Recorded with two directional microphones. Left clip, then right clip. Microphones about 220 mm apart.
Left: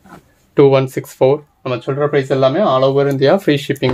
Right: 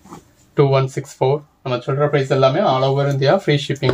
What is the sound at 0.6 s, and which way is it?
Speech, 45° left (ahead or behind).